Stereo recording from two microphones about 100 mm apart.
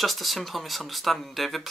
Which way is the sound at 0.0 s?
Centre (ahead or behind).